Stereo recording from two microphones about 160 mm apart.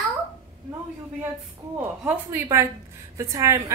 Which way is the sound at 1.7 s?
15° right (ahead or behind).